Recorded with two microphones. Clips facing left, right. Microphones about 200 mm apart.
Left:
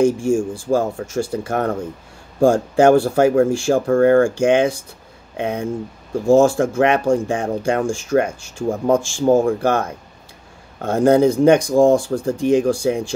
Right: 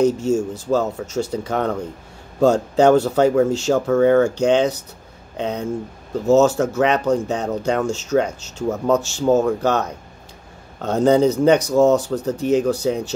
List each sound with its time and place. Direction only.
0.0 s speech: 10° left (ahead or behind)